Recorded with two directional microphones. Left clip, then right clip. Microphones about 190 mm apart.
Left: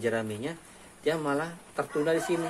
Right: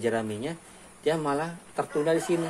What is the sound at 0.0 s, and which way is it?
Speech, 25° right (ahead or behind).